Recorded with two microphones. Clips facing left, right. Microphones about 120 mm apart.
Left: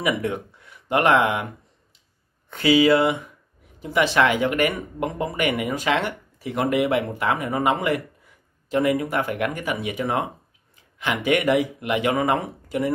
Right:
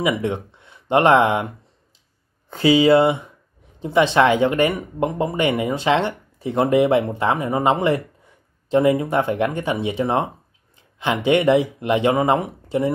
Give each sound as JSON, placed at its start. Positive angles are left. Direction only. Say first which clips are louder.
{"t": 0.0, "sound": "speech", "louder": "right 3 dB", "side_deg": -20}
{"t": 2.5, "sound": "speech", "louder": "right 3 dB", "side_deg": -30}